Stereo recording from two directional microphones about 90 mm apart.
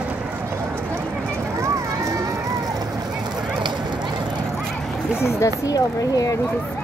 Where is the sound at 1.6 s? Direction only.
35° right (ahead or behind).